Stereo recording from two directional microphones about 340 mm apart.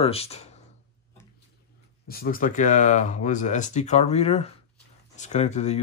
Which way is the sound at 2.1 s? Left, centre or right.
Left.